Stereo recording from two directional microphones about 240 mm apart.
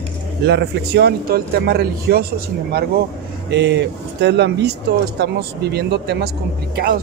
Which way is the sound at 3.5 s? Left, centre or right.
Right.